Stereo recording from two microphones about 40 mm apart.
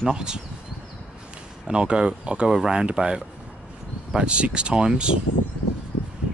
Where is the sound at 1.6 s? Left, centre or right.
Right.